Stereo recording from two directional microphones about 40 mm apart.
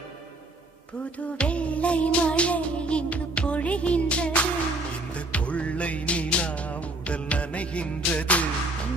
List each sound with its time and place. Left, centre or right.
1.2 s music: left